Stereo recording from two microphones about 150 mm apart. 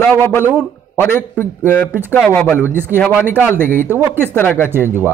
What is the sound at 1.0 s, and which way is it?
Speech, 15° left (ahead or behind).